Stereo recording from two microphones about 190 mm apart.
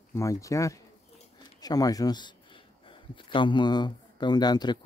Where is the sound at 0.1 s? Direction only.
15° left (ahead or behind).